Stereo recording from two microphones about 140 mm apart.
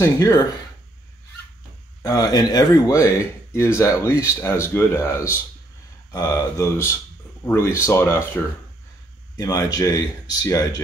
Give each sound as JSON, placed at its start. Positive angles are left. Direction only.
{"t": 0.0, "sound": "speech", "side_deg": 25}
{"t": 2.0, "sound": "speech", "side_deg": 25}